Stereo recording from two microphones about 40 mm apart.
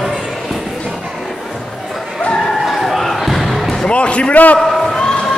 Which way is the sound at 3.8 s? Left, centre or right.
Left.